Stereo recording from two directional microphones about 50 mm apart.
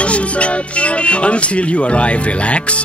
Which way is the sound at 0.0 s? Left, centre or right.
Left.